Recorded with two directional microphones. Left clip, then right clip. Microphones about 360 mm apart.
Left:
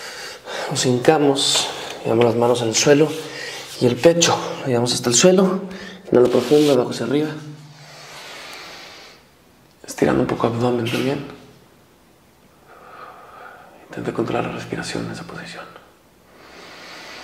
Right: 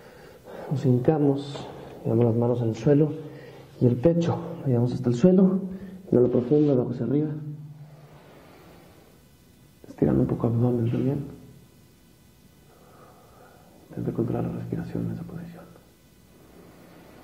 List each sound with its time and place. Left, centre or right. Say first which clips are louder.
0.0 s a sound: left 14 dB; centre
1.0 s speech: left 10 dB; centre
7.9 s vehicle: left 15 dB; centre
9.8 s speech: left 6 dB; centre
13.0 s speech: left 14 dB; centre
16.5 s a sound: left 14 dB; centre